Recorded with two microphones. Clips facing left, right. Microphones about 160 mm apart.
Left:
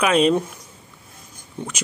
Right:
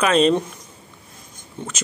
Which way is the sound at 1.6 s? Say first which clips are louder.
Left 1 dB; 15° left (ahead or behind).